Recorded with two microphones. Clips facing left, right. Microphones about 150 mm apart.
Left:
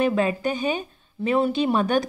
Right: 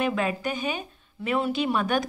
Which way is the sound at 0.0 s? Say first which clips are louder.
Left 5 dB; 35° left (ahead or behind).